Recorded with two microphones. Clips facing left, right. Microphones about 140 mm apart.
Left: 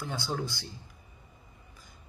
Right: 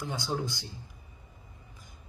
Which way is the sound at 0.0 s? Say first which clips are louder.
Right 1 dB; 15° right (ahead or behind).